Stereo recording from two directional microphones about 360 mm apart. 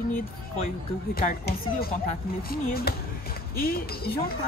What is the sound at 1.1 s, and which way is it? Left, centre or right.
Speech, left.